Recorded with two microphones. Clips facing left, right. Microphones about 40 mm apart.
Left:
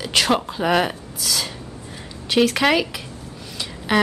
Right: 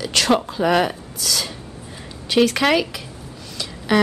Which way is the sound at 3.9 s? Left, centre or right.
Centre.